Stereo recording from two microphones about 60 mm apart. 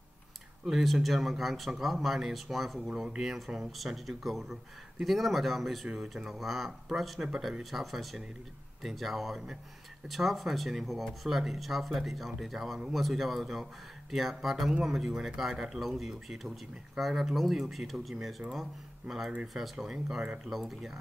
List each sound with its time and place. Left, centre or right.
0.7 s speech: centre
2.9 s speech: centre